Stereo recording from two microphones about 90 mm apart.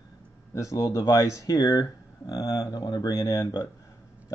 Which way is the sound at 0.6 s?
40° left (ahead or behind).